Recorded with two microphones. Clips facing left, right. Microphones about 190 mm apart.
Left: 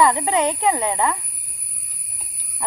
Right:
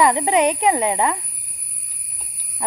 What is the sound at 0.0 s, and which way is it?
Speech, 20° right (ahead or behind).